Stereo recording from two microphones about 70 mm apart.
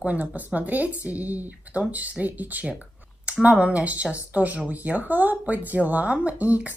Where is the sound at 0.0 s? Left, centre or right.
Right.